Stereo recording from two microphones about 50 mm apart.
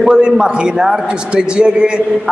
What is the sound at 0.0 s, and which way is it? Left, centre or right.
A man's voice, centre.